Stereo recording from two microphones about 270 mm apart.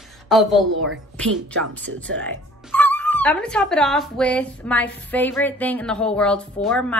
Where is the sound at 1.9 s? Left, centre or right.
Right.